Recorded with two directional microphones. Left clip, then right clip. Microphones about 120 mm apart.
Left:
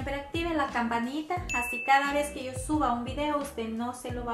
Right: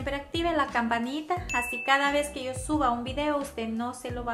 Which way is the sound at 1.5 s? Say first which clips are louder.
Right 1 dB; centre (ahead or behind).